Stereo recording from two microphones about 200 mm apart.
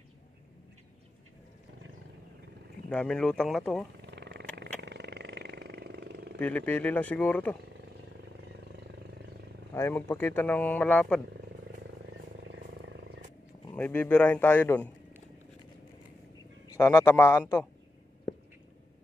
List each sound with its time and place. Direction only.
2.9 s speech: 5° left (ahead or behind)
4.0 s wild animals: 60° right (ahead or behind)
4.6 s vehicle: 60° right (ahead or behind)
6.4 s speech: 10° left (ahead or behind)
8.5 s vehicle: 60° right (ahead or behind)
9.8 s speech: 10° left (ahead or behind)
12.1 s wild animals: 65° right (ahead or behind)
13.7 s speech: 10° left (ahead or behind)
16.6 s speech: 15° left (ahead or behind)